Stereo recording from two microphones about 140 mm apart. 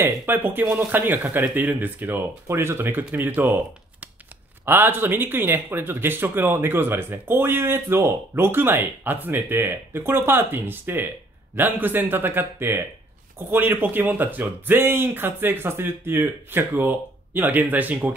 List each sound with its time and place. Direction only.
0.0 s speech: 15° right (ahead or behind)